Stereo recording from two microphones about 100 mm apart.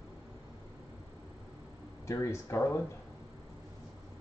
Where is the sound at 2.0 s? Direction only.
30° left (ahead or behind).